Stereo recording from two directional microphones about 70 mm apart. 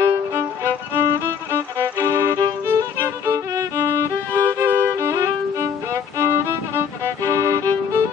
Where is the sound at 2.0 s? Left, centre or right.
Right.